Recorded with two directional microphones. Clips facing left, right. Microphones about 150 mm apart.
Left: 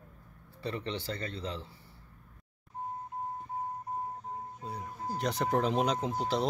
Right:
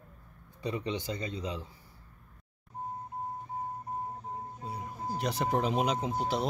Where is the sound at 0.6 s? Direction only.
15° right (ahead or behind).